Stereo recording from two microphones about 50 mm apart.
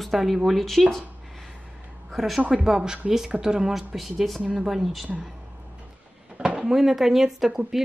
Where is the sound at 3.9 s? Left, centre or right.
Centre.